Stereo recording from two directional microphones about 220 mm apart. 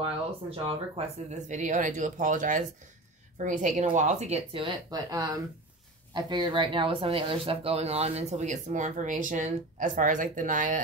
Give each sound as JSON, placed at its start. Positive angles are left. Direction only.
{"t": 0.7, "sound": "speech", "side_deg": -30}